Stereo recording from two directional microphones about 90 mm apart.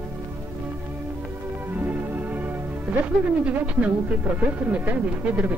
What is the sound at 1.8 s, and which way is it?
Music, 20° right (ahead or behind).